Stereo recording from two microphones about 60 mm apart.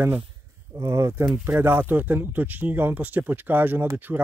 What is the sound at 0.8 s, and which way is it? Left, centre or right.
Speech, right.